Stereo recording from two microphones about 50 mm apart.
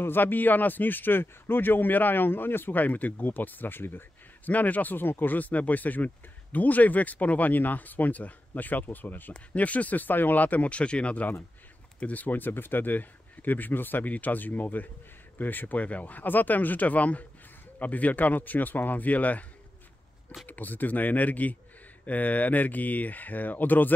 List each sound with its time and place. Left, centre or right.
0.0 s speech: left
4.5 s speech: left
9.3 s speech: left
20.4 s speech: left